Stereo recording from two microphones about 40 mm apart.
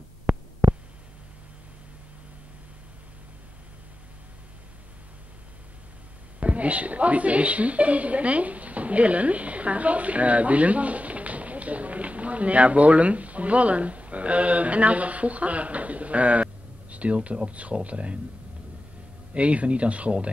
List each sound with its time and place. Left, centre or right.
0.3 s hum: right
6.4 s a woman's voice: right
19.3 s speech: right